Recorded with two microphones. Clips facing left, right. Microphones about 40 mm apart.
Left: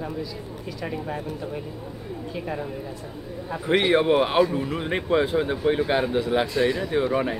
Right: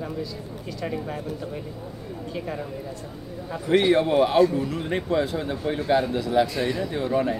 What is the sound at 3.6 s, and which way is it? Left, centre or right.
Speech, left.